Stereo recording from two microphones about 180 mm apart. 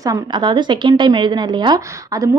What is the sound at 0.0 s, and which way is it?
A woman's voice, 20° right (ahead or behind).